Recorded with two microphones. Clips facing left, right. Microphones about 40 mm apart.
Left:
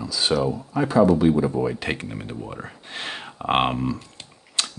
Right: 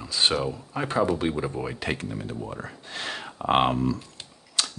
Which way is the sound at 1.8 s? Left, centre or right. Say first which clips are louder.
Left 2 dB; centre.